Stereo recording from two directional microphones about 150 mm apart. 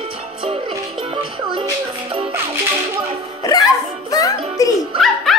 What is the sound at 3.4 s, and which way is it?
Music, 25° left (ahead or behind).